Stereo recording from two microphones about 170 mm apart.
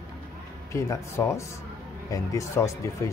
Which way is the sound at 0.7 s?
15° left (ahead or behind).